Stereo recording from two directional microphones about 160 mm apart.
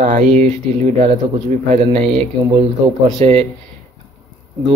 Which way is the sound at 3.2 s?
40° right (ahead or behind).